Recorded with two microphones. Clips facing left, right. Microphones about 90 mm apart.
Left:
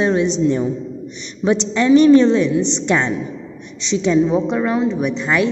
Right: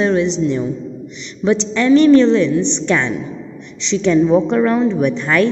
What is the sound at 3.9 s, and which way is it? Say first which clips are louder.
Speech: right 2 dB; 15° left (ahead or behind).